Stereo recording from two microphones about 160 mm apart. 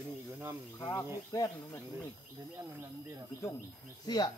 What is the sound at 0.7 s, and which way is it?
Speech, 20° left (ahead or behind).